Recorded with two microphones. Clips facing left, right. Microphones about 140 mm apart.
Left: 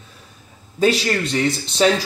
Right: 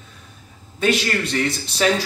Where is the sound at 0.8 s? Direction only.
35° left (ahead or behind).